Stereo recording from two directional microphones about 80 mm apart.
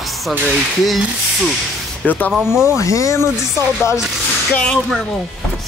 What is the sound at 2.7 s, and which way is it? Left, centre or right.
Speech, left.